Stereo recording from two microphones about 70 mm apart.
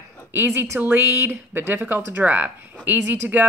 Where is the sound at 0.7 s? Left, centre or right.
Right.